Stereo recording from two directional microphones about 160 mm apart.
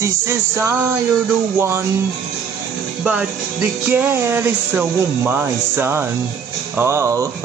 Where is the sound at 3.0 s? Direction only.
10° right (ahead or behind).